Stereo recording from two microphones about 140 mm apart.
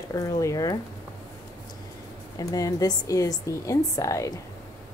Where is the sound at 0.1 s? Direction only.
25° left (ahead or behind).